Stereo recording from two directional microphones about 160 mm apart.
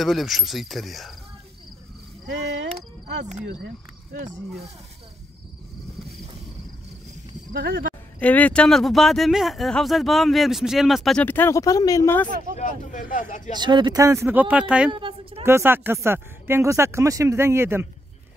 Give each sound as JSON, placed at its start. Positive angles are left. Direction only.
{"t": 0.0, "sound": "speech", "side_deg": 0}
{"t": 2.7, "sound": "speech", "side_deg": -45}
{"t": 7.5, "sound": "speech", "side_deg": -65}
{"t": 8.2, "sound": "speech", "side_deg": 10}
{"t": 11.2, "sound": "speech", "side_deg": 15}
{"t": 12.5, "sound": "speech", "side_deg": 50}
{"t": 13.5, "sound": "speech", "side_deg": -30}
{"t": 14.9, "sound": "a sound", "side_deg": -30}
{"t": 15.4, "sound": "speech", "side_deg": -15}